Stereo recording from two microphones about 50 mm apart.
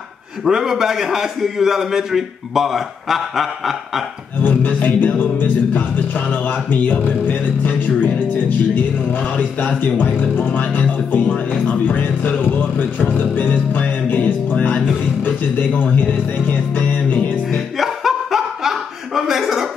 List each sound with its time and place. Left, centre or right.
0.5 s a man's voice: centre
4.4 s music: left
9.2 s a sound: left
9.8 s music: left
17.5 s chuckle: centre